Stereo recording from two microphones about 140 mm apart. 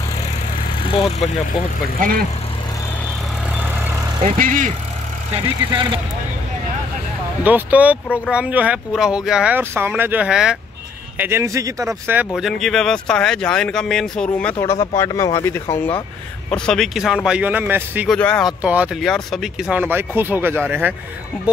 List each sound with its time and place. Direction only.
0.8 s vehicle: 40° left (ahead or behind)
2.0 s speech: 90° right
4.4 s speech: 70° right (ahead or behind)
5.3 s speech: 35° right (ahead or behind)
7.4 s speech: 10° right (ahead or behind)
11.1 s speech: 15° right (ahead or behind)
12.4 s speech: centre (ahead or behind)
15.0 s speech: 25° left (ahead or behind)
16.4 s speech: 5° left (ahead or behind); by 18.0 s 15° right (ahead or behind)
18.0 s speech: 10° left (ahead or behind)
18.6 s speech: 10° right (ahead or behind)
19.0 s speech: centre (ahead or behind); by 20.9 s 15° right (ahead or behind)